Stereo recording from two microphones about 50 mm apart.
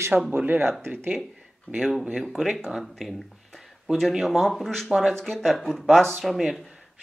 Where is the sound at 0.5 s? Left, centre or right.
Right.